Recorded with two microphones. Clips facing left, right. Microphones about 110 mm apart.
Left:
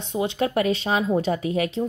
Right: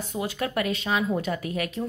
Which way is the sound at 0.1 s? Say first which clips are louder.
Left 6 dB; 25° left (ahead or behind).